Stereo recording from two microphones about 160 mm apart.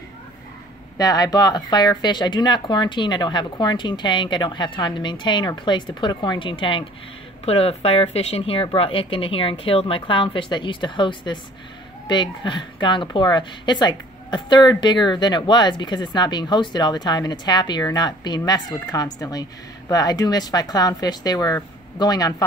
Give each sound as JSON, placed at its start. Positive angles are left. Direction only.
{"t": 0.9, "sound": "a woman's voice", "side_deg": 25}